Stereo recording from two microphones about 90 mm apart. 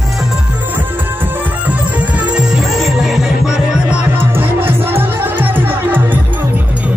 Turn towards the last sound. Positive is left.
turn(degrees=-20)  # may be behind; listen again after turning